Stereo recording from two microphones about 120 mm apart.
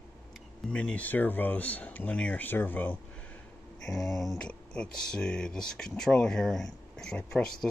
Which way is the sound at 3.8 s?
Centre (ahead or behind).